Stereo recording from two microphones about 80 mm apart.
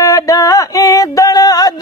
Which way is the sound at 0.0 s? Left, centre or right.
Left.